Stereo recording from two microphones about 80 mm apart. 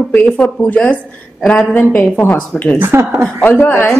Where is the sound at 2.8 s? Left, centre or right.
Right.